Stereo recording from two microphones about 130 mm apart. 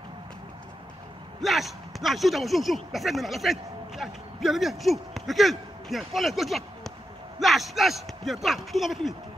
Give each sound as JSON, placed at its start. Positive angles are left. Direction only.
{"t": 1.4, "sound": "speech", "side_deg": 0}